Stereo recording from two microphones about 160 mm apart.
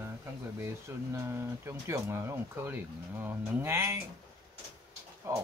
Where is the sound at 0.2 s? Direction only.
15° right (ahead or behind).